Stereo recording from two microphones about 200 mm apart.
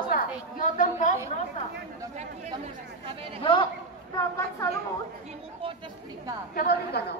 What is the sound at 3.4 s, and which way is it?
Speech, 25° left (ahead or behind).